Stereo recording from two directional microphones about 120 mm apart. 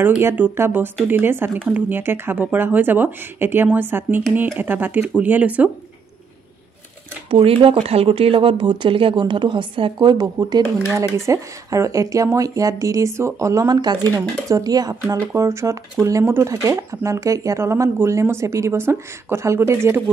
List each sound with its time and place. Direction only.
0.0 s speech: 20° right (ahead or behind)
7.2 s speech: 50° right (ahead or behind); by 20.0 s 20° right (ahead or behind)